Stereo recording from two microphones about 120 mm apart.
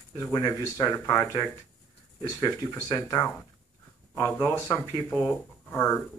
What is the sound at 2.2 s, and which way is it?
Speech, 30° left (ahead or behind).